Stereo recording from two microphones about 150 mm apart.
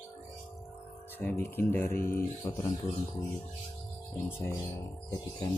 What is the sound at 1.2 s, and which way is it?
Speech, 15° left (ahead or behind).